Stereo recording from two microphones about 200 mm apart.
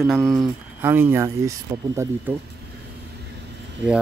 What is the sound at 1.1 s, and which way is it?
Speech, 15° right (ahead or behind).